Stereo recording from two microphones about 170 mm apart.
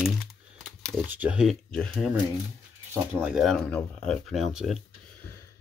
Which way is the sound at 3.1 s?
5° right (ahead or behind).